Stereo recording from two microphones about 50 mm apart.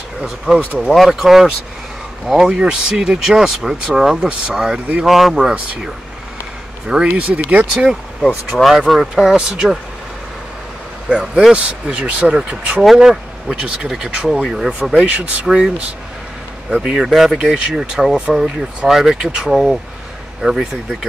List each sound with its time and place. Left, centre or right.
0.7 s speech: centre
2.5 s speech: centre
5.4 s speech: centre
7.2 s speech: right
7.7 s speech: centre
11.1 s speech: centre
15.0 s speech: right
15.4 s speech: centre
16.7 s speech: centre
17.1 s speech: centre
17.4 s speech: centre
18.9 s speech: centre